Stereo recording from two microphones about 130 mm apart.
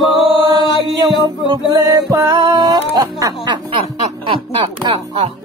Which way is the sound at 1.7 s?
25° right (ahead or behind).